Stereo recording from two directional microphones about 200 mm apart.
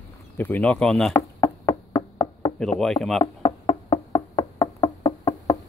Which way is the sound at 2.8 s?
Centre (ahead or behind).